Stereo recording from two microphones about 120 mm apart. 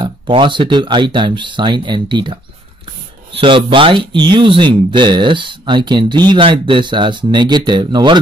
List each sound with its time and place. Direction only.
0.3 s speech: 40° right (ahead or behind)
3.3 s speech: 45° right (ahead or behind)